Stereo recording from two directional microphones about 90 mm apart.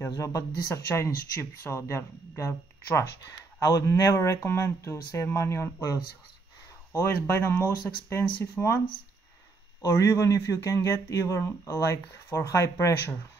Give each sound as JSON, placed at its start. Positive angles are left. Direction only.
{"t": 0.0, "sound": "speech", "side_deg": 35}
{"t": 6.9, "sound": "speech", "side_deg": 25}
{"t": 9.8, "sound": "speech", "side_deg": 35}